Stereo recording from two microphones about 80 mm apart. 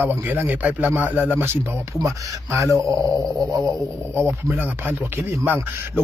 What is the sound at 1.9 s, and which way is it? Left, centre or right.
Speech, right.